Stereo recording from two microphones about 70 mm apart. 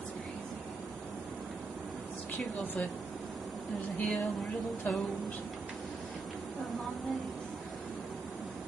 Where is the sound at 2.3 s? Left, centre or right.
Left.